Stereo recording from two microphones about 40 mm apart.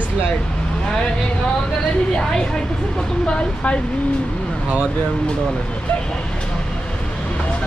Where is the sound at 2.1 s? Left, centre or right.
Centre.